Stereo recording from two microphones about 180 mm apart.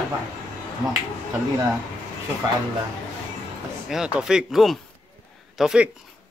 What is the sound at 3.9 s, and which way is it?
Speech, 5° right (ahead or behind).